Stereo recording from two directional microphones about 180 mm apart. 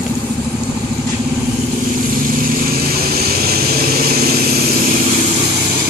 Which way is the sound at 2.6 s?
55° right (ahead or behind).